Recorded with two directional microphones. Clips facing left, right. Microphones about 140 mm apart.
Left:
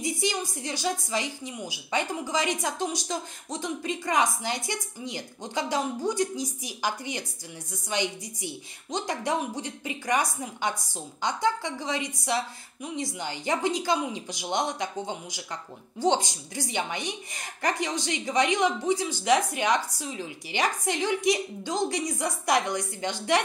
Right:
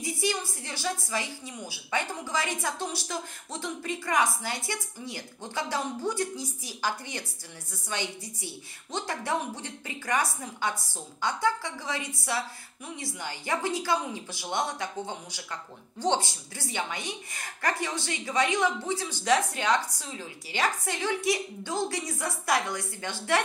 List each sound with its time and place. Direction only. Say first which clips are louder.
0.0 s a woman's voice: left 1 dB; 20° left (ahead or behind)